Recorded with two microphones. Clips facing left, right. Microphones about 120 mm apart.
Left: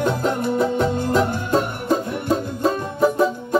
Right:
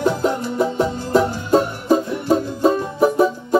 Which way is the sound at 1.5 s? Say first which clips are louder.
Right 4 dB; 10° right (ahead or behind).